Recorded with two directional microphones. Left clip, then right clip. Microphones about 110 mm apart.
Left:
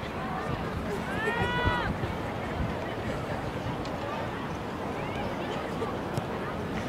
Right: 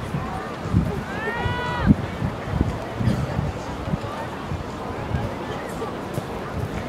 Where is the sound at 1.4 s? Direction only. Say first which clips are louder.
Right 2 dB; 25° right (ahead or behind).